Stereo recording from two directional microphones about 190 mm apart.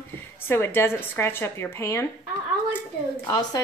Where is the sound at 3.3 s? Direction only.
20° left (ahead or behind).